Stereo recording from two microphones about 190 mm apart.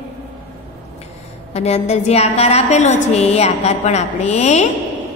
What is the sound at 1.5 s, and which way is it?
A woman's voice, 35° left (ahead or behind).